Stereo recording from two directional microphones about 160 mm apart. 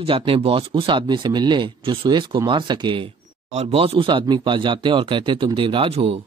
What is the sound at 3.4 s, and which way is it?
Speech, 40° right (ahead or behind).